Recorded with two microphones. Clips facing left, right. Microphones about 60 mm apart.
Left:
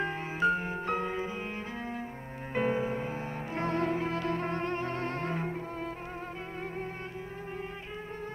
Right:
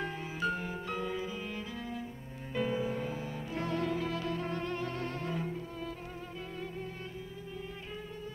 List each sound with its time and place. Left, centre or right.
0.0 s music: left
2.5 s music: left